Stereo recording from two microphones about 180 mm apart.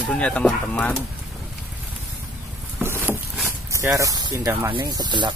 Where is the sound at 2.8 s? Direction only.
10° right (ahead or behind).